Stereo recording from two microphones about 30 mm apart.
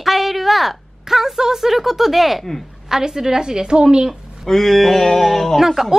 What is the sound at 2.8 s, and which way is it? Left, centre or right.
A woman's voice, centre.